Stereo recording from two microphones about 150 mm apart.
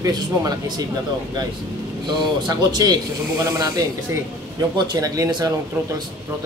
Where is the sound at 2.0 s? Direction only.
30° right (ahead or behind).